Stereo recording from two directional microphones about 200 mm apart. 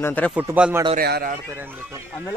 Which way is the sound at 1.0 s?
50° right (ahead or behind).